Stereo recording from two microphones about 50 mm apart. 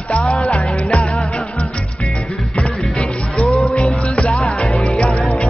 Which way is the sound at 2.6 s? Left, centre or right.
Centre.